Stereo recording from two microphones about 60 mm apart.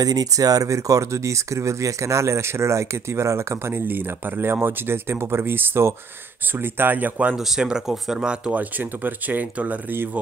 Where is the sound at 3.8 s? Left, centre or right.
Right.